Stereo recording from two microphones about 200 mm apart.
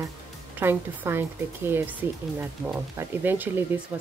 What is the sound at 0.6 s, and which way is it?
Speech, 10° right (ahead or behind).